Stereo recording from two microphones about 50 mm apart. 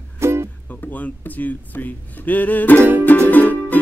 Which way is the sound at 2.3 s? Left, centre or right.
Left.